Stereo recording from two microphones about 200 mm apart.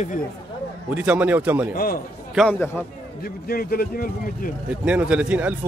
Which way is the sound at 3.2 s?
50° left (ahead or behind).